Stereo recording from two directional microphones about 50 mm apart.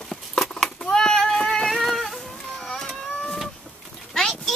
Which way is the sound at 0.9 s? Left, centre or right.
Centre.